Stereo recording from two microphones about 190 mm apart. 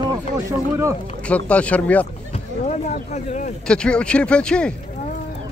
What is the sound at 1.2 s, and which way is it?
Speech, 5° left (ahead or behind).